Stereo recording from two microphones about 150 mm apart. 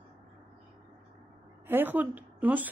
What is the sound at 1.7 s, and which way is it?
Speech, 15° right (ahead or behind).